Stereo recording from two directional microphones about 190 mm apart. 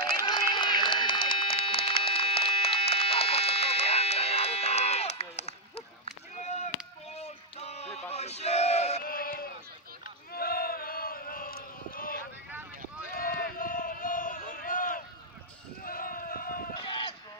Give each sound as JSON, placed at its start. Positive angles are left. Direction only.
{"t": 0.2, "sound": "run", "side_deg": 25}
{"t": 6.3, "sound": "a sound", "side_deg": 40}
{"t": 7.2, "sound": "male singing", "side_deg": 35}
{"t": 9.0, "sound": "a sound", "side_deg": 50}
{"t": 15.8, "sound": "run", "side_deg": 50}
{"t": 16.8, "sound": "sheep", "side_deg": 25}